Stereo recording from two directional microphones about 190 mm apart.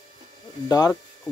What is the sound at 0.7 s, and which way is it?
Speech, 20° left (ahead or behind).